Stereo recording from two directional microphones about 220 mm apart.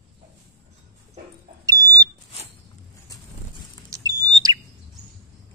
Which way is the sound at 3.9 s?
15° right (ahead or behind).